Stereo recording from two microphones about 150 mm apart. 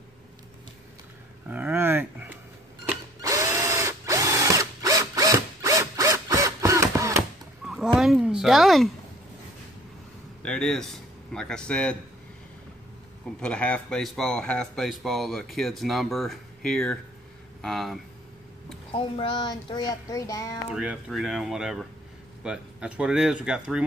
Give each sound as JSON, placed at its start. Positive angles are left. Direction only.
{"t": 1.5, "sound": "a sound", "side_deg": -10}
{"t": 3.2, "sound": "drill", "side_deg": -20}
{"t": 7.6, "sound": "a sound", "side_deg": 0}
{"t": 10.4, "sound": "speech", "side_deg": 5}
{"t": 13.4, "sound": "speech", "side_deg": 10}
{"t": 18.9, "sound": "speech", "side_deg": 35}
{"t": 20.7, "sound": "speech", "side_deg": -5}